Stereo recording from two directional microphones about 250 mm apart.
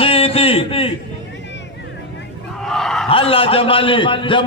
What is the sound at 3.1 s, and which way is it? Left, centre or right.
A man's voice, left.